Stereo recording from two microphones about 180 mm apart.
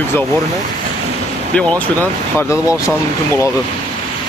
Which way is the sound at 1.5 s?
5° left (ahead or behind).